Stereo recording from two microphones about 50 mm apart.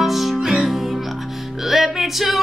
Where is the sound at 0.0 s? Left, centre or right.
Centre.